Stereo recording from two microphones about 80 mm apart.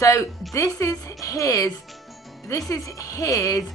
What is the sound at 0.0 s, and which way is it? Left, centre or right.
A woman's voice, left.